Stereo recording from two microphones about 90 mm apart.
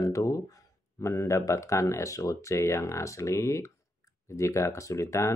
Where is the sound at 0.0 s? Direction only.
40° left (ahead or behind).